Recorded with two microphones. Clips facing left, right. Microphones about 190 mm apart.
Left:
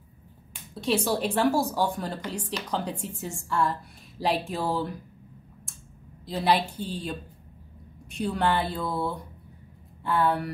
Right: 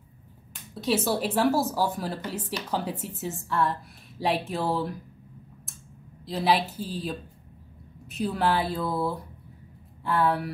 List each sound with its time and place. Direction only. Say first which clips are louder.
0.7 s speech: even; centre (ahead or behind)
6.2 s speech: even; centre (ahead or behind)